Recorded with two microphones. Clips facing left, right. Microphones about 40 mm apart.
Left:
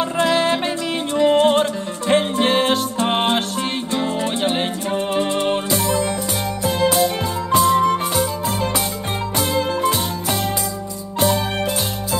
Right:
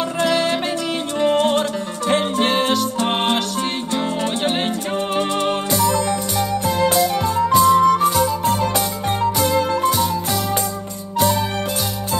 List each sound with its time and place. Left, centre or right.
0.2 s music: left
5.7 s music: left
7.5 s music: left